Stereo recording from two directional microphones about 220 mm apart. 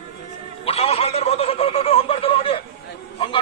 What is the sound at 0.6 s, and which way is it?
A man's voice, 25° left (ahead or behind).